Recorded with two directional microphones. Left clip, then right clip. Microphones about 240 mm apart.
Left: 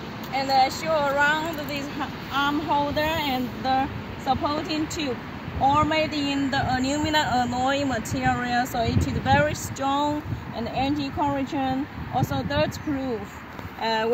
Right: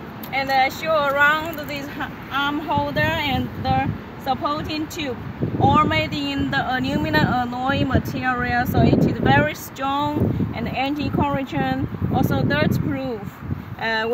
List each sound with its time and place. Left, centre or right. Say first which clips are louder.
0.3 s speech: right 2 dB; centre
13.8 s speech: right 2 dB; centre